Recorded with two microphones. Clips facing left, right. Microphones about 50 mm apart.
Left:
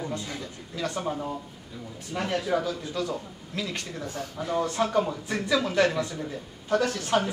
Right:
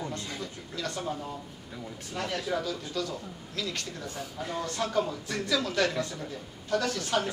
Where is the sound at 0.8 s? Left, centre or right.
Centre.